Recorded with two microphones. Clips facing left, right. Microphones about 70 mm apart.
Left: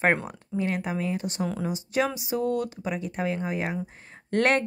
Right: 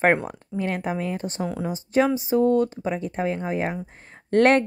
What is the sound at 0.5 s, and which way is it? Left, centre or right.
Speech, right.